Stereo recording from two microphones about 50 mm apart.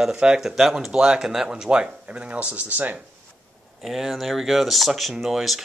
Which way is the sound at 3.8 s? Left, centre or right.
Centre.